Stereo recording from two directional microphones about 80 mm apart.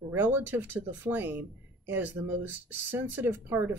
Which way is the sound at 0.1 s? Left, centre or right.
Right.